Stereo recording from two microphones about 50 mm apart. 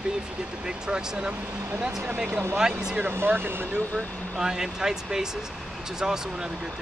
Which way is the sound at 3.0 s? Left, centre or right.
Right.